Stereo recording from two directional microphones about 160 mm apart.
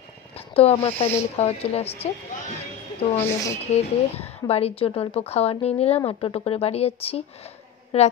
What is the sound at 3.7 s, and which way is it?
Speech, 40° left (ahead or behind).